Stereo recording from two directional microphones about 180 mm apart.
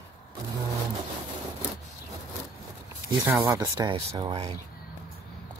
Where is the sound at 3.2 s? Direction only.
15° right (ahead or behind).